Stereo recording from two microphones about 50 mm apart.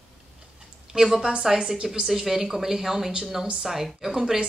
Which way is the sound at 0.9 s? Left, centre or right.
Centre.